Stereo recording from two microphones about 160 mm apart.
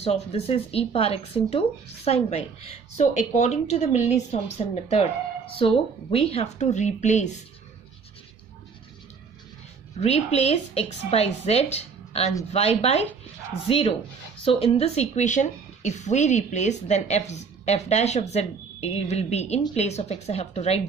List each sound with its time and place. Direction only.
0.0 s speech: 40° left (ahead or behind)
5.6 s a woman's voice: 35° left (ahead or behind)
9.9 s a woman's voice: 40° left (ahead or behind)